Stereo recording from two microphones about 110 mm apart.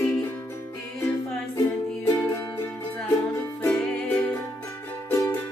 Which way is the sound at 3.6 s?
15° left (ahead or behind).